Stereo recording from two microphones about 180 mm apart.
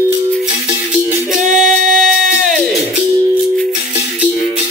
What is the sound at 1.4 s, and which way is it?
Singing, 45° right (ahead or behind).